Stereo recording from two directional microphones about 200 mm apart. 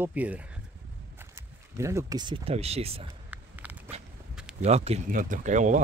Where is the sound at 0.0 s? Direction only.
5° right (ahead or behind).